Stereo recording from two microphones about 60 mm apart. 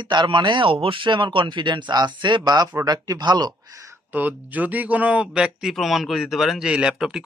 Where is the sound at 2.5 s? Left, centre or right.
Right.